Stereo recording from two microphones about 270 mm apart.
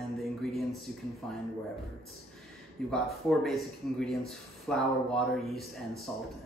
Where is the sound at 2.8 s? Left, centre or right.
Centre.